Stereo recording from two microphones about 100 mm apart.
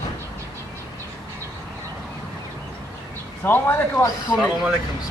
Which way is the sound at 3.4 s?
20° left (ahead or behind).